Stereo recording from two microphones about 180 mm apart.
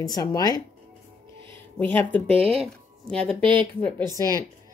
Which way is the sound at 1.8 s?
10° left (ahead or behind).